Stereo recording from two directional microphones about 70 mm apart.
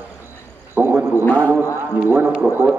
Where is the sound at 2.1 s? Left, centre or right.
Right.